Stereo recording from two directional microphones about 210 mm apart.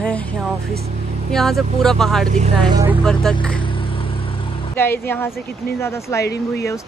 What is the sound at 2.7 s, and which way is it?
Speech, 15° right (ahead or behind).